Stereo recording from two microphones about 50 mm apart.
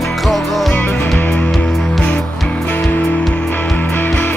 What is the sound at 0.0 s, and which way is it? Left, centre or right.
Music, centre.